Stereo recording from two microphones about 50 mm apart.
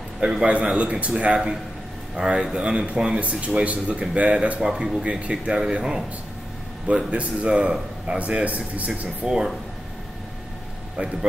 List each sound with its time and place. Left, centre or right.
0.2 s a man's voice: centre
3.2 s speech: right
7.1 s speech: right
11.0 s speech: right